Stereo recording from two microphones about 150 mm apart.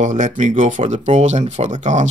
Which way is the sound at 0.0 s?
55° right (ahead or behind).